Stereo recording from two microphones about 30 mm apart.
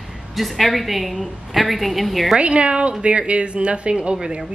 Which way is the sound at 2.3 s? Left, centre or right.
Right.